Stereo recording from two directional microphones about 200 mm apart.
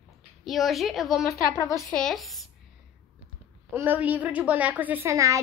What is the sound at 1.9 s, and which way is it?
Speech, centre (ahead or behind).